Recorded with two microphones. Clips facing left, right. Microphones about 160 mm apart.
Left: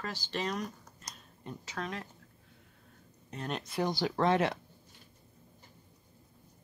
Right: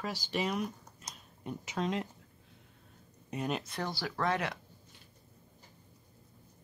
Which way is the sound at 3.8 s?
20° left (ahead or behind).